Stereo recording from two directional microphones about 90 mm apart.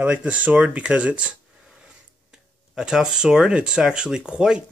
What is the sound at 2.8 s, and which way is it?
Speech, 5° right (ahead or behind).